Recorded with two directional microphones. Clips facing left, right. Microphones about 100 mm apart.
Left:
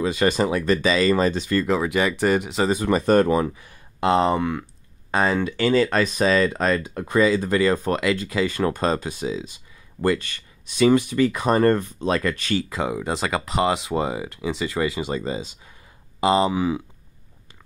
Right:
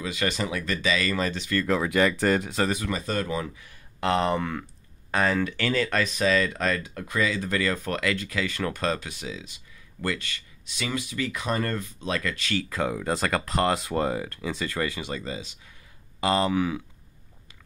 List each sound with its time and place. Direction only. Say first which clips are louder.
0.0 s speech: left 8 dB; 35° left (ahead or behind)
1.7 s speech: right 2 dB; 10° left (ahead or behind)
2.9 s speech: left 11 dB; 50° left (ahead or behind)
4.0 s speech: left 5 dB; 20° left (ahead or behind)
5.1 s speech: left 3 dB; 25° left (ahead or behind)
12.5 s speech: left 3 dB; 15° left (ahead or behind)
15.0 s speech: left 7 dB; 30° left (ahead or behind)